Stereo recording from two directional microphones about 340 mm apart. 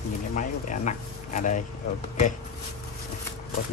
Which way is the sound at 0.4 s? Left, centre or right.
Left.